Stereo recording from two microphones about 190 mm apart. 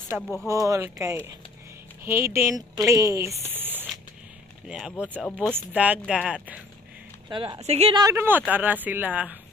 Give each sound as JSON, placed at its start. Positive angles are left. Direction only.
{"t": 0.1, "sound": "speech", "side_deg": -5}
{"t": 0.5, "sound": "speech", "side_deg": -15}
{"t": 7.2, "sound": "speech", "side_deg": -25}
{"t": 8.0, "sound": "speech", "side_deg": -15}